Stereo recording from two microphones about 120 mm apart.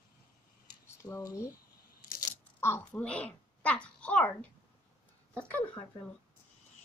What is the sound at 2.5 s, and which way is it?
A child's voice, 20° left (ahead or behind).